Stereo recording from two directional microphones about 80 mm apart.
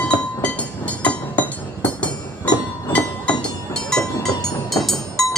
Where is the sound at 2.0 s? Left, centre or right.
Centre.